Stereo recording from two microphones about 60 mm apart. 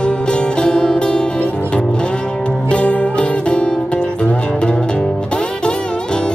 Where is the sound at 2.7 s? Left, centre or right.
Centre.